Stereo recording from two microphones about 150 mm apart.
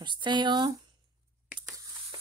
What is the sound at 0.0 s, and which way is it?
Speech, 30° right (ahead or behind).